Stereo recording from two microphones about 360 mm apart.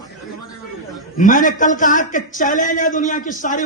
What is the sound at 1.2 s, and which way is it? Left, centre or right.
A man's voice, left.